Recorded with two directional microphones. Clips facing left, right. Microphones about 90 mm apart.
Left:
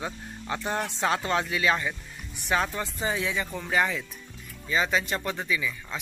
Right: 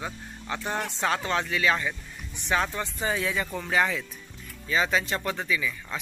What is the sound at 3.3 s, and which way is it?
Speech, centre (ahead or behind).